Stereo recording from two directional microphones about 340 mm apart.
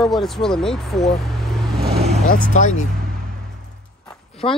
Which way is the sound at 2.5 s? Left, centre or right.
Left.